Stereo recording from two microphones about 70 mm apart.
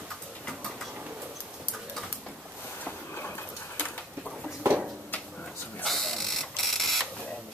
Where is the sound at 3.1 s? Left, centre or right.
Left.